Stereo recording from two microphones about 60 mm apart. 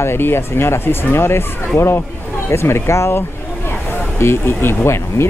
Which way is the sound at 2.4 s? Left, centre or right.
Left.